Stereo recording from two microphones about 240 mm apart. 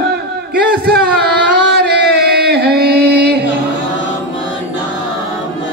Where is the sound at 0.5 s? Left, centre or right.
Right.